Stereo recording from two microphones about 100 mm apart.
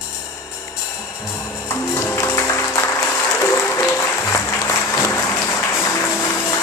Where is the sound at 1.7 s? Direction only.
25° left (ahead or behind).